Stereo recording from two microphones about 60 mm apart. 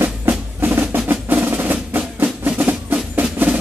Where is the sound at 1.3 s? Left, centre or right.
Right.